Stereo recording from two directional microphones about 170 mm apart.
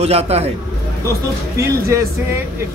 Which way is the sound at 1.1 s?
15° right (ahead or behind).